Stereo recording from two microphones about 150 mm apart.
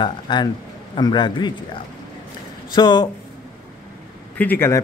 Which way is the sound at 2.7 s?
30° left (ahead or behind).